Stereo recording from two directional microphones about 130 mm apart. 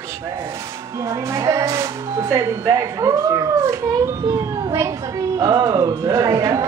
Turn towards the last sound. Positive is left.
turn(degrees=-25)  # may be behind; listen again after turning